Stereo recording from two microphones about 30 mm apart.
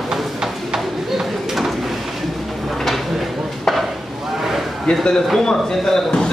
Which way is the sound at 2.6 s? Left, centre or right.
Centre.